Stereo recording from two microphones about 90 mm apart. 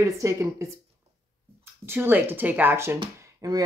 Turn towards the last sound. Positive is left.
turn(degrees=-45)  # may be behind; listen again after turning